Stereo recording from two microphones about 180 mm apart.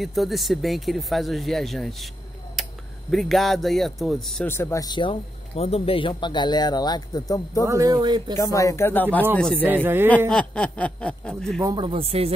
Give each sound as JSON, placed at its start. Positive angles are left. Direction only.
{"t": 0.0, "sound": "speech", "side_deg": 0}
{"t": 2.6, "sound": "a sound", "side_deg": 0}
{"t": 3.1, "sound": "speech", "side_deg": 0}
{"t": 4.5, "sound": "a man's voice", "side_deg": 15}
{"t": 7.6, "sound": "speech", "side_deg": -20}
{"t": 8.4, "sound": "speech", "side_deg": 15}
{"t": 9.8, "sound": "a man's voice", "side_deg": -10}
{"t": 10.3, "sound": "speech", "side_deg": 5}
{"t": 11.6, "sound": "speech", "side_deg": -25}